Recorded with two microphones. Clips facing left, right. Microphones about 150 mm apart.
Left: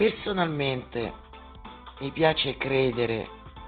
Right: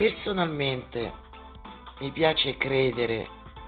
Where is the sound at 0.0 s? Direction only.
Centre (ahead or behind).